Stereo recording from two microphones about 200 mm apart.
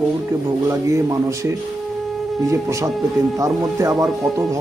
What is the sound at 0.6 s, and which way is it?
Speech, 15° right (ahead or behind).